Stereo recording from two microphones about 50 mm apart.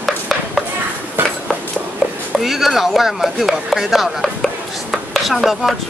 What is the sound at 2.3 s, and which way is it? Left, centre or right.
Speech, centre.